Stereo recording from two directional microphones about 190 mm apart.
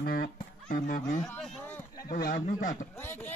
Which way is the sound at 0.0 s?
55° left (ahead or behind).